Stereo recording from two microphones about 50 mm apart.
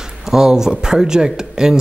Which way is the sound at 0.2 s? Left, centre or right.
Centre.